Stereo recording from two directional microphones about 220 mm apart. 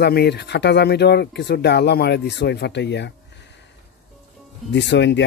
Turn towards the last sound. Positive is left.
turn(degrees=55)  # may be behind; listen again after turning